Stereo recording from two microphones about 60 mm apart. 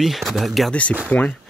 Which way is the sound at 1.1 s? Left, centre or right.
Left.